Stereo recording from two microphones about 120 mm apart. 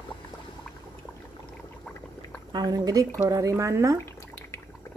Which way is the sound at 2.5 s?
35° right (ahead or behind).